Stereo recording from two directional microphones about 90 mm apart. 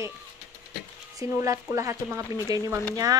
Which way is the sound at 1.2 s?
35° right (ahead or behind).